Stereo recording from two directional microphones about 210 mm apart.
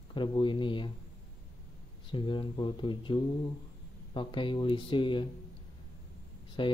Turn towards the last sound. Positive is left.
turn(degrees=25)  # may be behind; listen again after turning